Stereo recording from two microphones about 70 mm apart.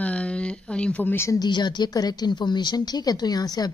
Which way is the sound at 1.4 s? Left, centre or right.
Left.